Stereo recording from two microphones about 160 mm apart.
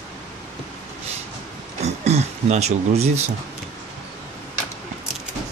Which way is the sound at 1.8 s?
45° right (ahead or behind).